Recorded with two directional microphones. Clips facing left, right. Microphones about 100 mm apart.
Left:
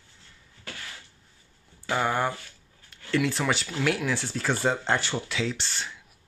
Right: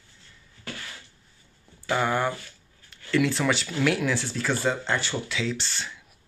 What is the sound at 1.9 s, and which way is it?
Speech, 10° left (ahead or behind).